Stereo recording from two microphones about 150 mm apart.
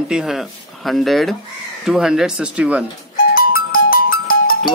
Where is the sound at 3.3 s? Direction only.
75° left (ahead or behind).